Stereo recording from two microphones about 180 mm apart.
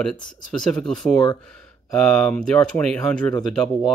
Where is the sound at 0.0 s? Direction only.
5° left (ahead or behind).